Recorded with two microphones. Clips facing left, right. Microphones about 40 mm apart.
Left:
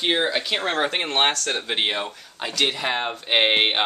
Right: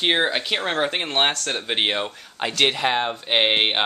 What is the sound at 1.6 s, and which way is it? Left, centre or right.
Speech, centre.